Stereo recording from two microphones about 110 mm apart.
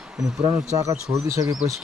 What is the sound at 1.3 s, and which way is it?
Speech, 30° right (ahead or behind).